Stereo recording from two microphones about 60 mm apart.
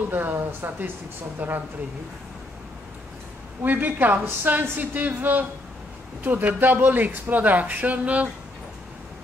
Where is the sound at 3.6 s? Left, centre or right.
Right.